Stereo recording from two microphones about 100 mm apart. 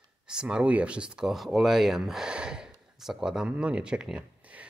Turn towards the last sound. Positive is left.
turn(degrees=-10)  # may be behind; listen again after turning